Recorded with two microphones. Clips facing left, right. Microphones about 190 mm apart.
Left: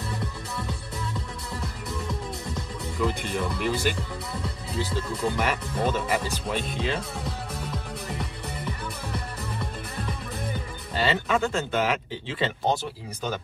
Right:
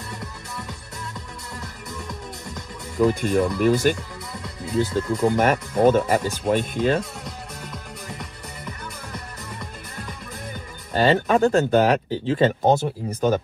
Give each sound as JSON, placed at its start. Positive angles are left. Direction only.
{"t": 3.0, "sound": "speech", "side_deg": -45}
{"t": 7.2, "sound": "music", "side_deg": 5}
{"t": 11.0, "sound": "speech", "side_deg": -45}